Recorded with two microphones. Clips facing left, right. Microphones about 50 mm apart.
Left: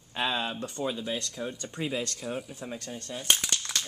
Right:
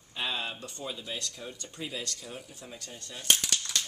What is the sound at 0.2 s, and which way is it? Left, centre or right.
Speech, left.